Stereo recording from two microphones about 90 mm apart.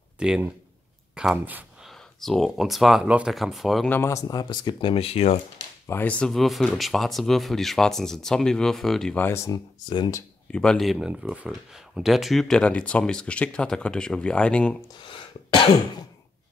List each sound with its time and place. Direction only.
0.2 s speech: 10° right (ahead or behind)
1.8 s speech: centre (ahead or behind)
4.1 s speech: 45° left (ahead or behind); by 5.3 s 90° left
5.9 s speech: 20° left (ahead or behind)
6.3 s speech: centre (ahead or behind)
9.5 s speech: 55° left (ahead or behind)
10.5 s speech: 10° left (ahead or behind)
11.0 s speech: 10° right (ahead or behind); by 14.8 s 10° left (ahead or behind)
15.0 s speech: 70° left (ahead or behind)